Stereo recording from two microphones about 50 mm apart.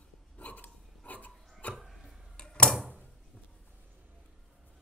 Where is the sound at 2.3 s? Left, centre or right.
Centre.